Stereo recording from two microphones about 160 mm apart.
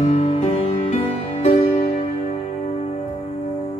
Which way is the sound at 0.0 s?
45° left (ahead or behind).